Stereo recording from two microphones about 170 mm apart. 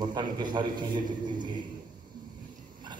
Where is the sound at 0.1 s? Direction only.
25° right (ahead or behind).